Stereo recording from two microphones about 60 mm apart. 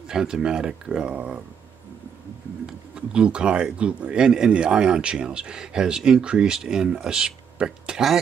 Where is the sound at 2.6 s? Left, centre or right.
Centre.